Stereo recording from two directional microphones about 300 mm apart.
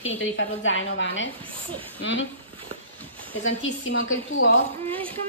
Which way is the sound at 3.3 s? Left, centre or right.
Left.